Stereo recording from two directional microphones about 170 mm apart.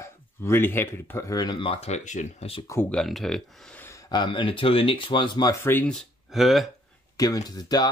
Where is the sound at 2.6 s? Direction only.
15° left (ahead or behind).